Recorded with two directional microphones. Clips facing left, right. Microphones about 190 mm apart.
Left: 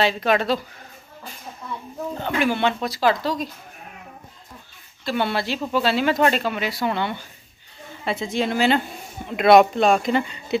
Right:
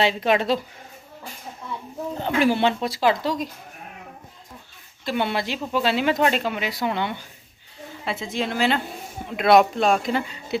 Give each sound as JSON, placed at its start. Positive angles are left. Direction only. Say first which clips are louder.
{"t": 0.0, "sound": "speech", "louder": "even", "side_deg": -20}
{"t": 2.2, "sound": "speech", "louder": "right 2 dB", "side_deg": -30}
{"t": 5.0, "sound": "speech", "louder": "left 1 dB", "side_deg": -15}
{"t": 8.0, "sound": "speech", "louder": "left 3 dB", "side_deg": 0}